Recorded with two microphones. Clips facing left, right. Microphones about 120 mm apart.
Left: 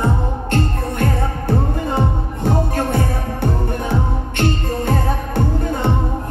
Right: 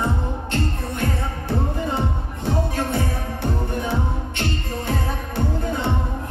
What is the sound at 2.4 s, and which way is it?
Music, 50° left (ahead or behind).